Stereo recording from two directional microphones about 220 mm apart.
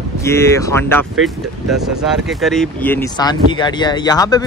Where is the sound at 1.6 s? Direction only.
Centre (ahead or behind).